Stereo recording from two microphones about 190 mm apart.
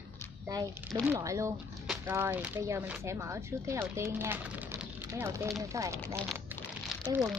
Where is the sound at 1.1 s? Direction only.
15° right (ahead or behind).